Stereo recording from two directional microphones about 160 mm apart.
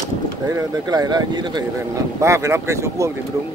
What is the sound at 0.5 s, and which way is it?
Speech, 25° right (ahead or behind).